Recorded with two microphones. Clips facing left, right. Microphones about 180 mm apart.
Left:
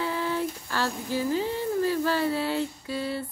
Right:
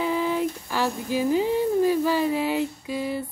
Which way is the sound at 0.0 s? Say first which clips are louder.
Right 4 dB; 15° right (ahead or behind).